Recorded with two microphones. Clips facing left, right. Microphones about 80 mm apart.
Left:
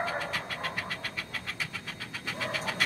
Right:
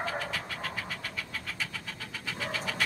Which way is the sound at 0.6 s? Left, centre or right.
Left.